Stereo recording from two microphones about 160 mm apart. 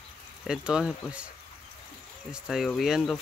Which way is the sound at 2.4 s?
Centre (ahead or behind).